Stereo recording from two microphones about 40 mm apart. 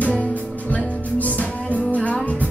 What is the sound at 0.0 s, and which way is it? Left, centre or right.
Music, left.